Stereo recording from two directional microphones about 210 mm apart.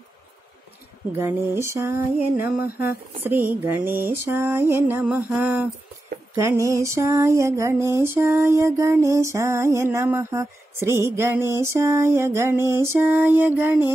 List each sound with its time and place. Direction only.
1.1 s lullaby: 10° right (ahead or behind)
2.6 s speech: 45° left (ahead or behind)
3.3 s lullaby: 10° right (ahead or behind)
6.3 s a sound: 15° right (ahead or behind)
6.7 s lullaby: 15° right (ahead or behind)